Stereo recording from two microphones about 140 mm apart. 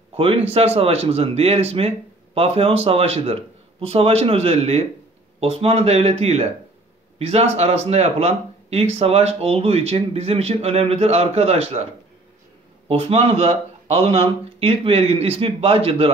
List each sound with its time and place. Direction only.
0.1 s speech: 45° right (ahead or behind)
12.8 s speech: 45° right (ahead or behind)